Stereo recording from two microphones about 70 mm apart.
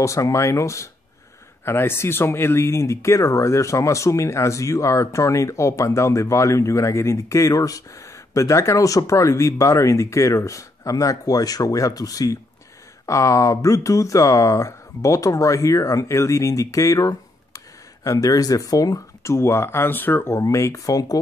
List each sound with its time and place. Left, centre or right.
0.0 s speech: left
1.6 s speech: left
19.2 s speech: left
20.3 s speech: left